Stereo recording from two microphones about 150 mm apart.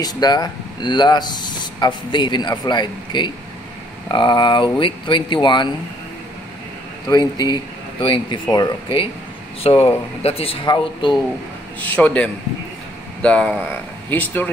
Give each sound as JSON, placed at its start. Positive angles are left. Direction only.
{"t": 0.0, "sound": "speech", "side_deg": 25}
{"t": 7.1, "sound": "speech", "side_deg": 30}
{"t": 11.8, "sound": "speech", "side_deg": 10}